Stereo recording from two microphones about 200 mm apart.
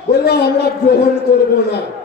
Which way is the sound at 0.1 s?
55° left (ahead or behind).